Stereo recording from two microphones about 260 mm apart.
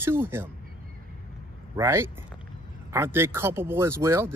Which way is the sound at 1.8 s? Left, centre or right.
Centre.